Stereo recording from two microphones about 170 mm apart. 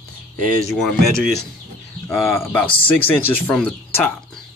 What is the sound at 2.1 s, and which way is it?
Speech, 15° left (ahead or behind).